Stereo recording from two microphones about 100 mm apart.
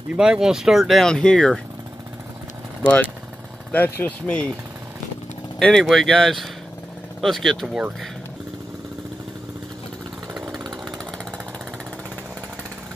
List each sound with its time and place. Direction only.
0.1 s speech: 10° right (ahead or behind); by 1.6 s 10° left (ahead or behind)
2.8 s speech: 15° left (ahead or behind)
5.6 s speech: 5° left (ahead or behind)
10.3 s chainsaw: 5° right (ahead or behind)